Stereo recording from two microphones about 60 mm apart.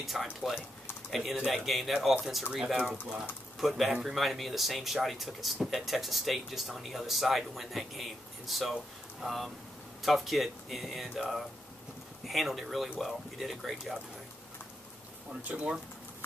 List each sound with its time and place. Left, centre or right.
0.0 s speech: centre
15.4 s speech: right